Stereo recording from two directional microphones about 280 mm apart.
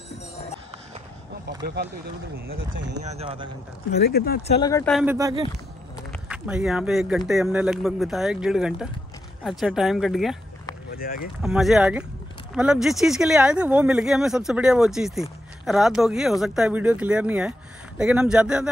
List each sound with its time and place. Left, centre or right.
2.4 s speech: right
3.0 s speech: right
3.9 s speech: left
4.6 s speech: centre
4.9 s speech: centre
10.9 s boat: left
11.4 s speech: centre